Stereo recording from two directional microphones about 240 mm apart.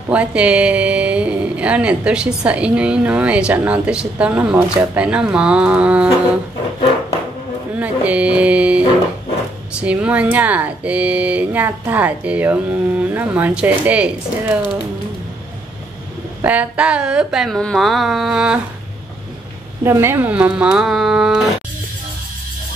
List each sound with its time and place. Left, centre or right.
0.1 s speech: centre
7.7 s music: centre
9.8 s speech: centre
16.4 s speech: centre
19.8 s speech: centre